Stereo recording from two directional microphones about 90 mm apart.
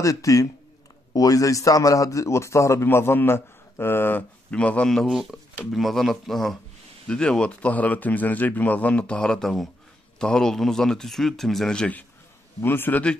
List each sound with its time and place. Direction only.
0.0 s a man's voice: 40° left (ahead or behind)
4.5 s speech: 15° left (ahead or behind)